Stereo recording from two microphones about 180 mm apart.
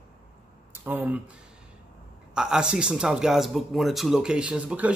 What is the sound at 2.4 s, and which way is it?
Speech, 5° right (ahead or behind).